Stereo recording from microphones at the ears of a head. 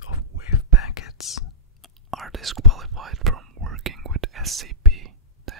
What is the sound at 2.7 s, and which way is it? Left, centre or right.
Whispering, right.